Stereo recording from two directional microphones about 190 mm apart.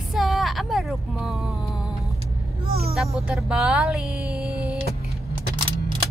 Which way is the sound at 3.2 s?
5° right (ahead or behind).